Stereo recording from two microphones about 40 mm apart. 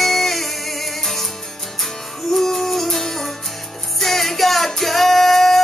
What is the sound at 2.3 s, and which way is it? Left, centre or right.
Music, centre.